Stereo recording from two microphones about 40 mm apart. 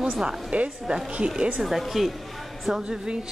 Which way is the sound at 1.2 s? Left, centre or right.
Right.